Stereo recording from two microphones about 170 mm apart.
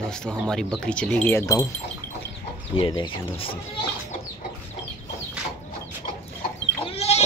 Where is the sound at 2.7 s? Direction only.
30° left (ahead or behind).